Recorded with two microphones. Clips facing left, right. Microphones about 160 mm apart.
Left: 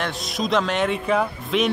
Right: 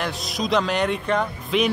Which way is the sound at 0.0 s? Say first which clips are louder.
Left 1 dB; centre (ahead or behind).